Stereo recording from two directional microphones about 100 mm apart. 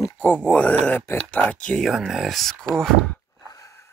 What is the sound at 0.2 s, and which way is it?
Speech, 10° left (ahead or behind).